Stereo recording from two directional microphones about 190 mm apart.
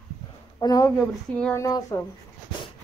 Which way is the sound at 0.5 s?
20° left (ahead or behind).